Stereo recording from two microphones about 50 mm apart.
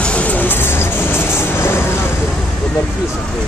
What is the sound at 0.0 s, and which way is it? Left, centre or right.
Vehicle, left.